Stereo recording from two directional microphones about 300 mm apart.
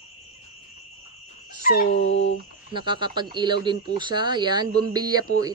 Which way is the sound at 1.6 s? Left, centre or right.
Left.